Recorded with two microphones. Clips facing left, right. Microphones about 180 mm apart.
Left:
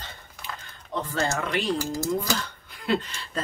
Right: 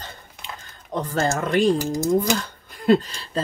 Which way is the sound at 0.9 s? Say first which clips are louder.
Right 4 dB; 45° right (ahead or behind).